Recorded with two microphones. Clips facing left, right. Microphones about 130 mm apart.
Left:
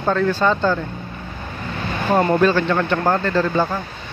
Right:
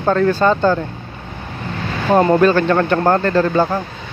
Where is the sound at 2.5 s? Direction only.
50° right (ahead or behind).